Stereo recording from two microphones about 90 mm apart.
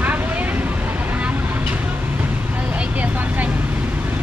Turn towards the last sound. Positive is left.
turn(degrees=-15)  # may be behind; listen again after turning